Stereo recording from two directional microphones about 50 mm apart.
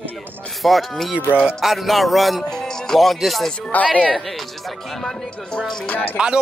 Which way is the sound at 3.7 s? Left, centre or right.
Left.